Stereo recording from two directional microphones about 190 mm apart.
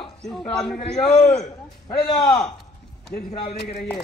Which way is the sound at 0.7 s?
40° left (ahead or behind).